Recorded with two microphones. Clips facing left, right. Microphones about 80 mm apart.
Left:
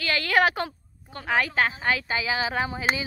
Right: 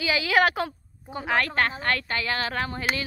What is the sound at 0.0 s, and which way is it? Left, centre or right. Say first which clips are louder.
A woman's voice: even; centre.